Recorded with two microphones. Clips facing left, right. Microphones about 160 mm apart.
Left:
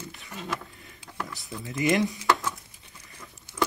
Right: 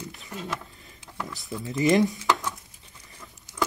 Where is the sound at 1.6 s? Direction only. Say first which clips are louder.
Right 3 dB; 30° right (ahead or behind).